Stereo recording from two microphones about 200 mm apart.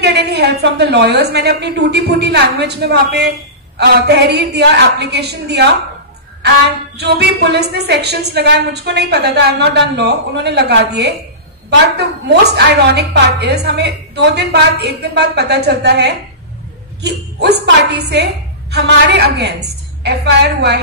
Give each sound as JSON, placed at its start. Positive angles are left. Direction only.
{"t": 0.0, "sound": "a woman's voice", "side_deg": -55}
{"t": 7.0, "sound": "a woman's voice", "side_deg": -55}
{"t": 12.5, "sound": "a woman's voice", "side_deg": -55}